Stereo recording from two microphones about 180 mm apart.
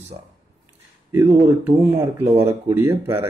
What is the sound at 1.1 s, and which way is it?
Speech, 15° right (ahead or behind).